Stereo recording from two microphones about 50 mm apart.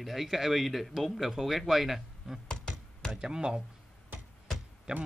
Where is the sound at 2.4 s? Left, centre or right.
Centre.